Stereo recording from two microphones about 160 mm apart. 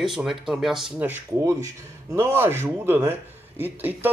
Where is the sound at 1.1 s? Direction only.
15° right (ahead or behind).